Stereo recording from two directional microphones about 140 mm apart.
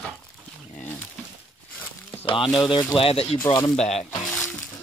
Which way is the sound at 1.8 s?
15° left (ahead or behind).